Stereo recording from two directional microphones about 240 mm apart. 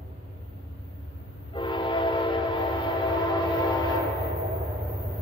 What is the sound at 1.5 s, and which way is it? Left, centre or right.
Train, centre.